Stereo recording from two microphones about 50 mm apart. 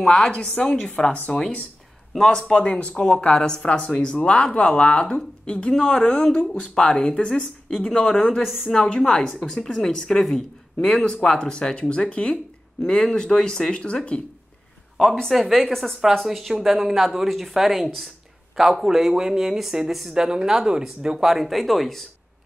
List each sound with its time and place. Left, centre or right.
0.0 s speech: centre
1.1 s speech: left
2.1 s a man's voice: centre
15.0 s speech: centre